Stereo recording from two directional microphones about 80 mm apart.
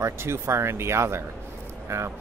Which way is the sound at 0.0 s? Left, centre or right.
Right.